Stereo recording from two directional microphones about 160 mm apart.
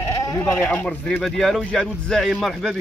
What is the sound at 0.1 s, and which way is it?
Sheep, 25° left (ahead or behind).